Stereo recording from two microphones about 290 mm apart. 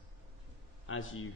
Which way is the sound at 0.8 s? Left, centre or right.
Left.